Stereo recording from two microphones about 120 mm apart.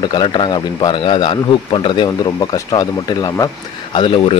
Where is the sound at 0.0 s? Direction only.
40° left (ahead or behind).